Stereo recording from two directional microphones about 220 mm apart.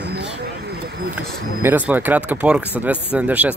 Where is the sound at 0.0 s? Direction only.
50° right (ahead or behind).